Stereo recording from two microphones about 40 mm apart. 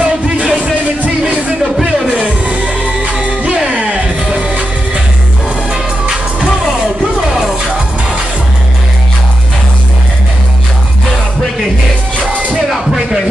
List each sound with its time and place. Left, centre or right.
0.0 s music: right
2.1 s music: right
12.2 s music: right
12.7 s music: centre